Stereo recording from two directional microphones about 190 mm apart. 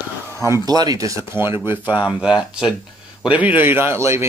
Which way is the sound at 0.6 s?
20° right (ahead or behind).